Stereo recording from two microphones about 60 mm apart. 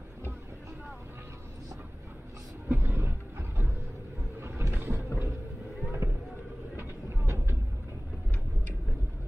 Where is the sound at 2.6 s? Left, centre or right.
Right.